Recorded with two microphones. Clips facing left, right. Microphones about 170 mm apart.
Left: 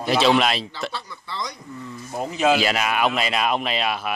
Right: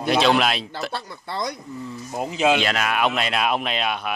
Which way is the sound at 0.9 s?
55° right (ahead or behind).